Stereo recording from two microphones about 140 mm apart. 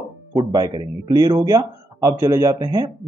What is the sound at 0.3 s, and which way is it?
Speech, 25° right (ahead or behind).